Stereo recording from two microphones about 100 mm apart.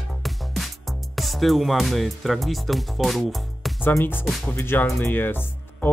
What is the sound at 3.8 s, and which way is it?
Speech, 25° left (ahead or behind).